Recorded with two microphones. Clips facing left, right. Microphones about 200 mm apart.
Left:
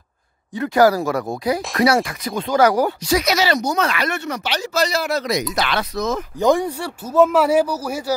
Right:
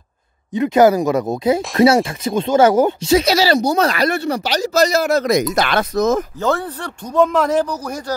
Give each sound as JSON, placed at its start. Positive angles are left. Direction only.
{"t": 0.6, "sound": "speech", "side_deg": -20}
{"t": 6.4, "sound": "speech", "side_deg": 15}